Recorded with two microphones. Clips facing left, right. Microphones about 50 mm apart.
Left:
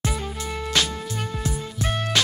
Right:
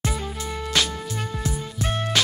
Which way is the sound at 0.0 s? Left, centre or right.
Centre.